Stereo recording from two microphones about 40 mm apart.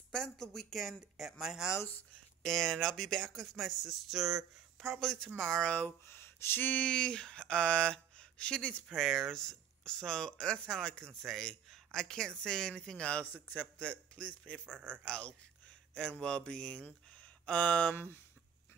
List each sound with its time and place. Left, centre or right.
0.1 s speech: centre
2.4 s speech: centre
6.0 s speech: left
6.8 s speech: left
8.9 s speech: centre; by 13.2 s left
13.2 s a man's voice: left
13.7 s speech: left
14.7 s speech: right
15.0 s speech: left
17.9 s speech: left